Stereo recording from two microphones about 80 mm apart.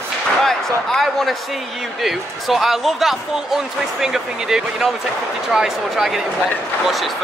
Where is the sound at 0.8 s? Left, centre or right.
Centre.